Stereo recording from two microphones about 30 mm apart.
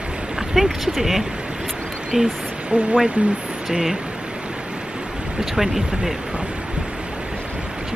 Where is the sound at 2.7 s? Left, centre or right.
Right.